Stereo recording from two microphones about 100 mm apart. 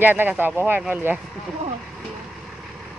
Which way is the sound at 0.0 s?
20° right (ahead or behind).